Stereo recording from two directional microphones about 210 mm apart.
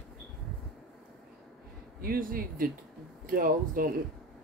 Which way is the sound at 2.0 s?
45° right (ahead or behind).